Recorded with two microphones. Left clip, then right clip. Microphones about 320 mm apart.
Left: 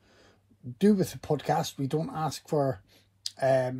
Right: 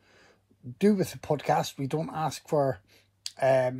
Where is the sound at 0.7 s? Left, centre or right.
Centre.